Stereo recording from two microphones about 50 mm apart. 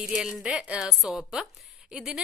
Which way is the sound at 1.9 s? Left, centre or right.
Centre.